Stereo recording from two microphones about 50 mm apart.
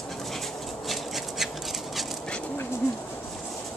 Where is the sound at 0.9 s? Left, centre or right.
Centre.